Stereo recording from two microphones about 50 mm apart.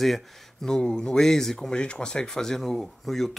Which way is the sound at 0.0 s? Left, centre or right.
Centre.